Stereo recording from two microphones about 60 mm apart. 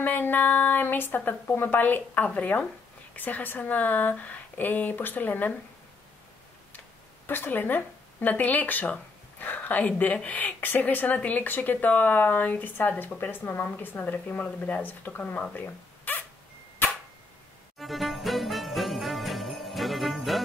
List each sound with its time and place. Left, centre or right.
0.0 s speech: left
7.2 s speech: left
15.6 s zipper: left
17.7 s jingle bell: centre